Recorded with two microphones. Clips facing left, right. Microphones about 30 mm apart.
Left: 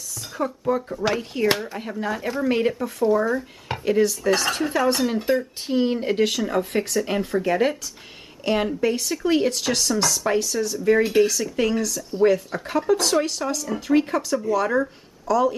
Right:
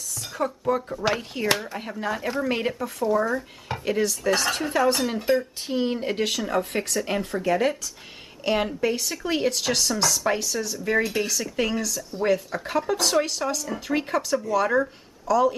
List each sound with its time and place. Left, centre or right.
0.4 s speech: centre
8.5 s speech: centre
11.0 s speech: centre
11.2 s speech: centre